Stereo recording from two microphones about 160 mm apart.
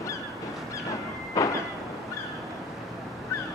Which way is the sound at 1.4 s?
20° left (ahead or behind).